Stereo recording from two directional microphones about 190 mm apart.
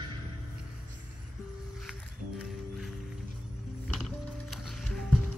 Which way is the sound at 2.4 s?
Centre (ahead or behind).